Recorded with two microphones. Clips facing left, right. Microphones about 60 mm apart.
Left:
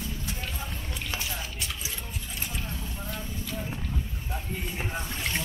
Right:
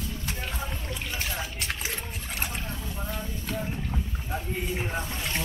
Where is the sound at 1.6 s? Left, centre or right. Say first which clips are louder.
Right 4 dB; right.